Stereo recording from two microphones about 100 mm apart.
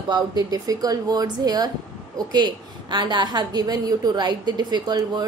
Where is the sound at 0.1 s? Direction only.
40° right (ahead or behind).